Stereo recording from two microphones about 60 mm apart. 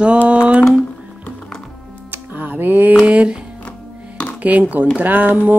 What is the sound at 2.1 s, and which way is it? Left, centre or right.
Music, right.